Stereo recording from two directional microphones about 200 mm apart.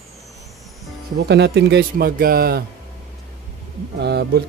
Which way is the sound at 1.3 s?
55° right (ahead or behind).